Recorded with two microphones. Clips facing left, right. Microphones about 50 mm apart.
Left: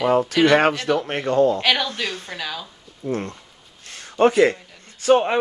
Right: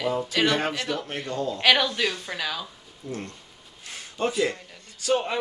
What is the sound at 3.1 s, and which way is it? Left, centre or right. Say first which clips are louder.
A man's voice: left 9 dB; left.